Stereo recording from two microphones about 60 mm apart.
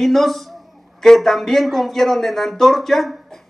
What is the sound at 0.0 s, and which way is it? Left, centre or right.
Speech, centre.